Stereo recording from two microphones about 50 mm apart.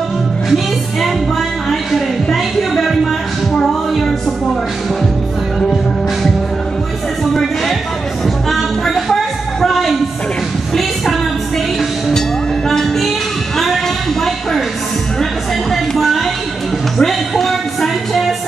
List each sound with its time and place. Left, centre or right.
1.7 s a sound: centre
8.5 s music: centre
12.6 s music: centre
15.7 s music: centre